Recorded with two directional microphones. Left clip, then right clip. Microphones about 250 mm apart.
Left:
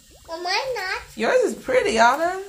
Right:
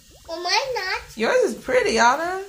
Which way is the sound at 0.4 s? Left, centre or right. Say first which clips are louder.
Right 2 dB; centre.